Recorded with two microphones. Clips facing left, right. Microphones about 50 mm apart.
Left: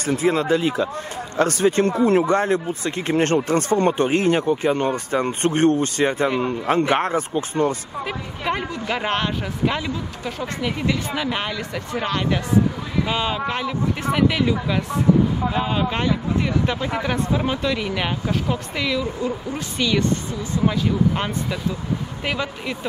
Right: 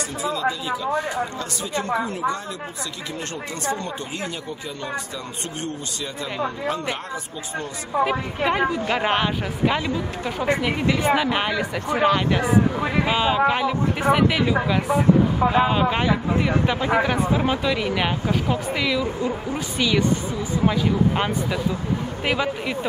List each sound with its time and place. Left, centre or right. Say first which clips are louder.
0.1 s speech: left 8 dB; left
8.0 s a woman's voice: right 9 dB; centre
21.2 s speech: right 2 dB; centre